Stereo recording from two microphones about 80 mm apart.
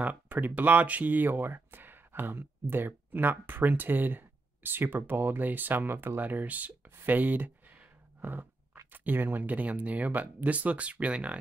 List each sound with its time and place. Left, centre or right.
0.0 s speech: right
7.0 s a sound: right
8.9 s speech: right